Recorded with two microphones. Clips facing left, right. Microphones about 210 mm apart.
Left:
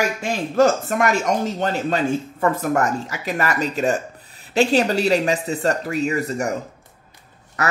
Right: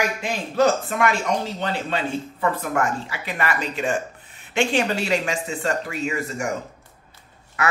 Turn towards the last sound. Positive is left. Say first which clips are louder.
# left 1 dB
turn(degrees=40)  # may be behind; listen again after turning